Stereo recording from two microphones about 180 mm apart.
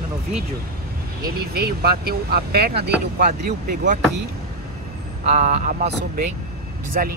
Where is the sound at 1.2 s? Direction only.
60° right (ahead or behind).